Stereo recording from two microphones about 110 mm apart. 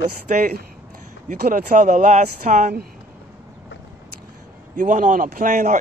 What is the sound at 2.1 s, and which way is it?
Speech, 90° right.